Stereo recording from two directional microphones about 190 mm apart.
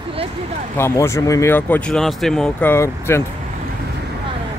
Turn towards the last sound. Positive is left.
turn(degrees=15)  # may be behind; listen again after turning